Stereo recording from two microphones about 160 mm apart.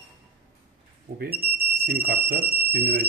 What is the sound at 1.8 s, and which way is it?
Speech, 70° right (ahead or behind).